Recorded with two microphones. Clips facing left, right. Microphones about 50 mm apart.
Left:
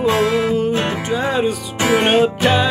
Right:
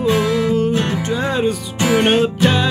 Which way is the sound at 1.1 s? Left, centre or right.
Centre.